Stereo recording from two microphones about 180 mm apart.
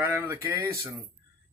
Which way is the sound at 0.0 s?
15° right (ahead or behind).